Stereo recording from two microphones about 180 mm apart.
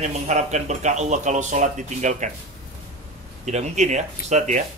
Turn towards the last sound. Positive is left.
turn(degrees=-40)  # may be behind; listen again after turning